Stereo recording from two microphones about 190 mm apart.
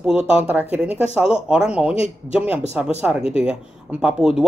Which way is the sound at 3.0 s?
5° right (ahead or behind).